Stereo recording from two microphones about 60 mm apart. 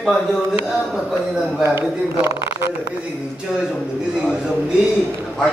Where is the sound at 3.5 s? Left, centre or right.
Centre.